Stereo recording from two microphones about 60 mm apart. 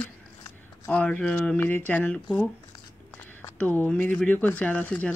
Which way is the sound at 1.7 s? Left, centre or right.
Left.